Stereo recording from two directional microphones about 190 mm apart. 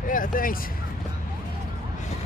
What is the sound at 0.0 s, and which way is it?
Speech, 45° left (ahead or behind).